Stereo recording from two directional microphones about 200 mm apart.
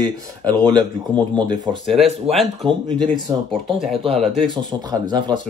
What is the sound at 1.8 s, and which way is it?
Speech, centre (ahead or behind).